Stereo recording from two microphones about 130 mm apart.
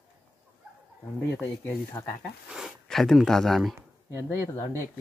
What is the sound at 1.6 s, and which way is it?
Speech, 15° left (ahead or behind).